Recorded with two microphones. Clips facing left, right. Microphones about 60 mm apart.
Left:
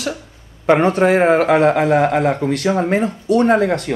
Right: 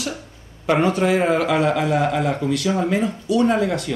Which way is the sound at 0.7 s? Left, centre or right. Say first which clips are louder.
Left 5 dB; left.